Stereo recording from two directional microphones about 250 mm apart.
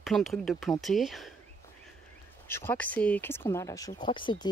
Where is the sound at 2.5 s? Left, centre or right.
Centre.